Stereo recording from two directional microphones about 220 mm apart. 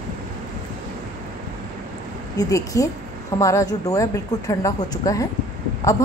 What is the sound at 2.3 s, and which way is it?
A woman's voice, 15° left (ahead or behind).